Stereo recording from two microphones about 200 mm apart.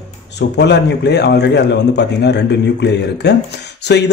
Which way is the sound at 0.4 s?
60° left (ahead or behind).